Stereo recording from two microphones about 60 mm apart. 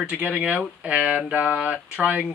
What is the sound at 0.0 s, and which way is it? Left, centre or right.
A man's voice, centre.